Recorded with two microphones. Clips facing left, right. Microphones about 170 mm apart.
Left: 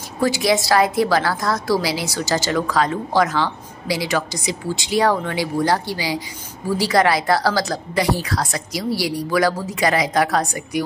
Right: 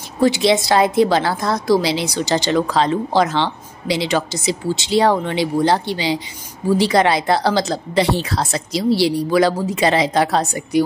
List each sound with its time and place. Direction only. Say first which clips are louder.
0.2 s a woman's voice: right 3 dB; 25° right (ahead or behind)